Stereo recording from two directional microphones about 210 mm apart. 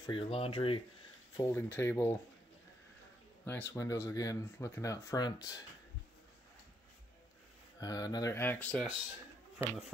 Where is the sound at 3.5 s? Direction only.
10° left (ahead or behind).